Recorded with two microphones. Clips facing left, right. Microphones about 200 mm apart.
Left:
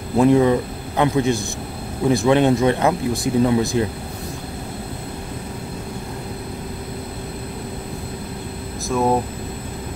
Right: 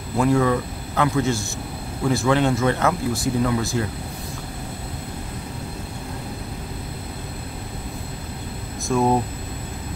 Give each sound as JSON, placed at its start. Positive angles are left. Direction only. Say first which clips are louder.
{"t": 0.2, "sound": "speech", "louder": "left 5 dB", "side_deg": 20}
{"t": 8.9, "sound": "speech", "louder": "even", "side_deg": 0}